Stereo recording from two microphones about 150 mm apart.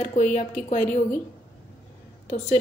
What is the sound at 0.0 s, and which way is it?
Speech, 50° left (ahead or behind).